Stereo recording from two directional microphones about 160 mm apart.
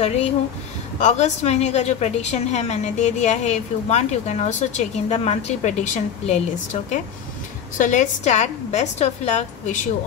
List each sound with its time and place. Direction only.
0.0 s a woman's voice: 40° left (ahead or behind)